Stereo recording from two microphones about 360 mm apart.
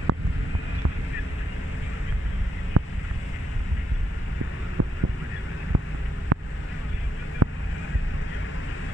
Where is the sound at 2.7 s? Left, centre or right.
Right.